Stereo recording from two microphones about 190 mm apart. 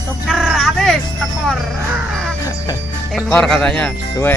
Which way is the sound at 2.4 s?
20° left (ahead or behind).